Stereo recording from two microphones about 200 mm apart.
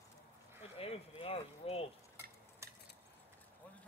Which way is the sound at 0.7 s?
30° left (ahead or behind).